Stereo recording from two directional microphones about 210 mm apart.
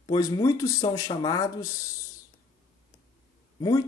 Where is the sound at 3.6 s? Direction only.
20° left (ahead or behind).